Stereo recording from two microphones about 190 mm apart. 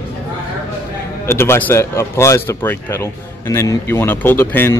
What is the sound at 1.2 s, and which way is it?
Speech, 10° left (ahead or behind).